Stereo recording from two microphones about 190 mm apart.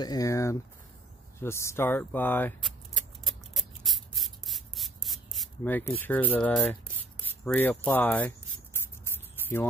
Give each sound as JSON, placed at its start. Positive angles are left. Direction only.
{"t": 0.0, "sound": "speech", "side_deg": 20}
{"t": 3.3, "sound": "rub", "side_deg": 0}
{"t": 5.6, "sound": "speech", "side_deg": 10}